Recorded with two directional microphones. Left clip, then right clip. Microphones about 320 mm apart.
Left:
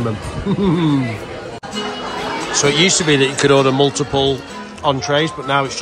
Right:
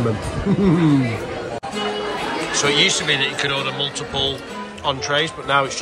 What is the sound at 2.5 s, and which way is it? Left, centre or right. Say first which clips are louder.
Speech: left 3 dB; centre.